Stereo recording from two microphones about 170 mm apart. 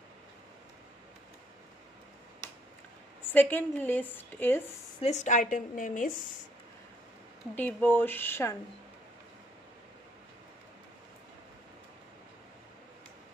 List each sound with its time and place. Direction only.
3.3 s a woman's voice: 10° left (ahead or behind)
5.0 s a woman's voice: 45° left (ahead or behind)
7.5 s a woman's voice: 10° left (ahead or behind)